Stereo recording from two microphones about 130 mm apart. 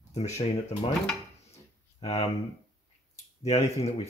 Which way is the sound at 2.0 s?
55° left (ahead or behind).